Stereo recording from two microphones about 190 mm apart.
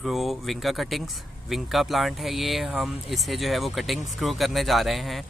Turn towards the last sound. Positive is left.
turn(degrees=0)  # may be behind; listen again after turning